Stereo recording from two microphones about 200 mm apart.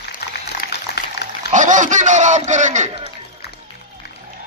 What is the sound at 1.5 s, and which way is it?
A man's voice, 40° right (ahead or behind).